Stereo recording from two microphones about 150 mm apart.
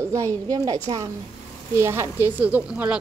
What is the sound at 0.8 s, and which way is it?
A woman's voice, 25° right (ahead or behind).